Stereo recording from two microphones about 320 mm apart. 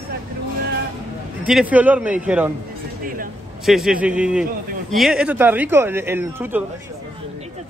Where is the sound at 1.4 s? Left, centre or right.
Centre.